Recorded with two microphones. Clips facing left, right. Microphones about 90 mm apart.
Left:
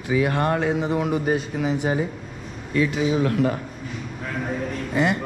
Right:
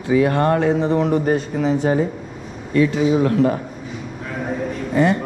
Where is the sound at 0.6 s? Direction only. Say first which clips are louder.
Right 5 dB; 10° left (ahead or behind).